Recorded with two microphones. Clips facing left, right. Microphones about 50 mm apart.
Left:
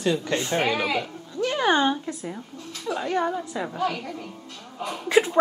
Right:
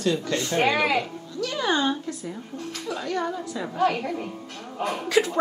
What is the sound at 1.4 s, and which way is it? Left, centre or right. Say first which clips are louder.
Speech: left 3 dB; left.